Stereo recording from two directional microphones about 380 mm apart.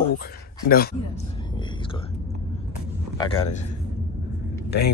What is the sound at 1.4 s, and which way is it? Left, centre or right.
Whispering, centre.